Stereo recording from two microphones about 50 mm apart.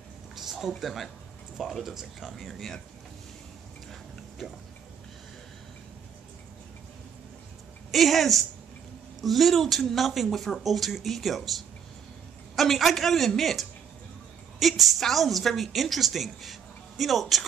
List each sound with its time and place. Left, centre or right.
0.4 s a woman's voice: centre
7.9 s a woman's voice: centre
12.5 s a woman's voice: centre